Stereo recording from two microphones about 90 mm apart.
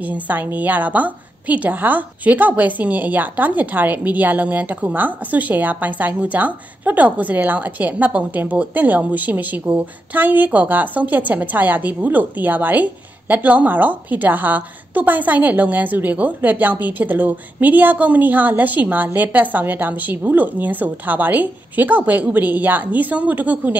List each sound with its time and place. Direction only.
0.0 s a woman's voice: 20° right (ahead or behind)